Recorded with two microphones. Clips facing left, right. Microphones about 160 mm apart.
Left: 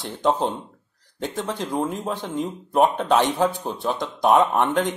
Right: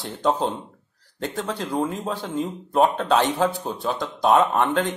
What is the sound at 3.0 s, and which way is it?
Speech, 15° left (ahead or behind).